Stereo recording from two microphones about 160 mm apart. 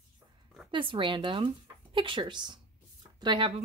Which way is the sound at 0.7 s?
30° right (ahead or behind).